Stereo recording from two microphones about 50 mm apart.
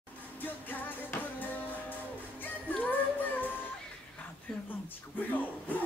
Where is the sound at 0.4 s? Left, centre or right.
Left.